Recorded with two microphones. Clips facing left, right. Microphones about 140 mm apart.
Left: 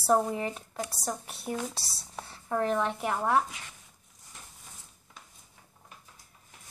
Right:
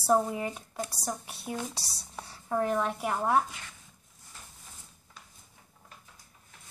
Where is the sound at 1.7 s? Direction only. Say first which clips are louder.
Even; 20° right (ahead or behind).